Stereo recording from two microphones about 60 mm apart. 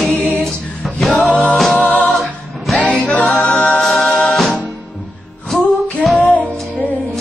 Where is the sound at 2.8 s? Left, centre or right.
Left.